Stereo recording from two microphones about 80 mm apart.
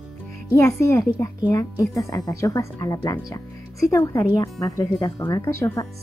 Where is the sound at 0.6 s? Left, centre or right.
Left.